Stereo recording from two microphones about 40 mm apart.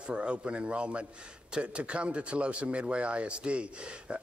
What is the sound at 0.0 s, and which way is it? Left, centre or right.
Speech, right.